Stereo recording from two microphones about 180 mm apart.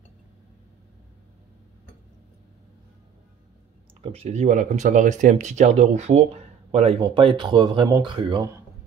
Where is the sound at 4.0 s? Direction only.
35° right (ahead or behind).